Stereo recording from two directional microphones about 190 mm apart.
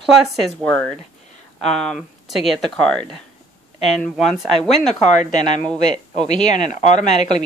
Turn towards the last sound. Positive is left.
turn(degrees=35)  # may be behind; listen again after turning